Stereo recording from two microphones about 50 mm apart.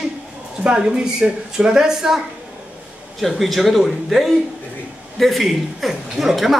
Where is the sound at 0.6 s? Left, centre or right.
Centre.